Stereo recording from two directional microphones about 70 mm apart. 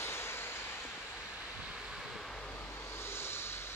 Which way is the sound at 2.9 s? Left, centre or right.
Left.